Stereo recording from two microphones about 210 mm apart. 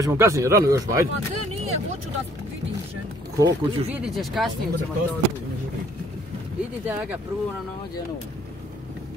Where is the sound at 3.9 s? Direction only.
Centre (ahead or behind).